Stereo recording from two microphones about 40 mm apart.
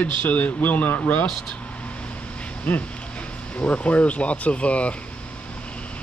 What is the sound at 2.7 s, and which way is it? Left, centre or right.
Speech, left.